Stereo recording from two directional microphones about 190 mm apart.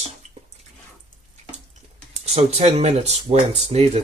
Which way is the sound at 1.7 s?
35° right (ahead or behind).